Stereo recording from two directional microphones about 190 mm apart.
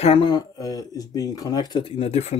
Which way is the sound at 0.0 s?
25° left (ahead or behind).